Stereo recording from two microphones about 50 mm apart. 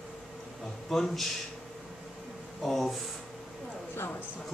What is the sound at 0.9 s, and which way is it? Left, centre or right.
Speech, centre.